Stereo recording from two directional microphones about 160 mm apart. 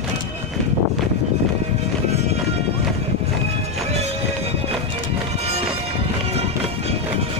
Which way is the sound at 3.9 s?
40° right (ahead or behind).